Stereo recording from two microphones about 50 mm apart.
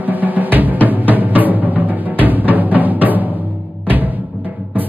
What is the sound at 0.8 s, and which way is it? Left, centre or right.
Music, right.